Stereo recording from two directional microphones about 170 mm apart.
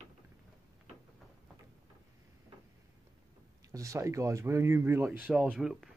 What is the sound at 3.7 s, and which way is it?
Speech, 20° right (ahead or behind).